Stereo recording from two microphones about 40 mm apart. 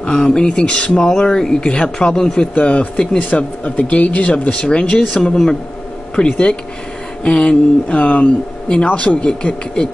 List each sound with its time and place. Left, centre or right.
0.0 s speech: left
2.5 s speech: left; by 5.4 s centre
6.2 s speech: left